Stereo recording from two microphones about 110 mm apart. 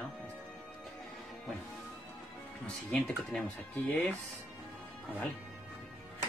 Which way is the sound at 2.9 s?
10° left (ahead or behind).